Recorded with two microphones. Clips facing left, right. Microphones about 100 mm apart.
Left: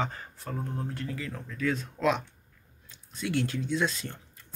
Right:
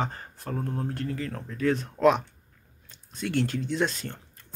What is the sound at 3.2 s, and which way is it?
Speech, 45° right (ahead or behind).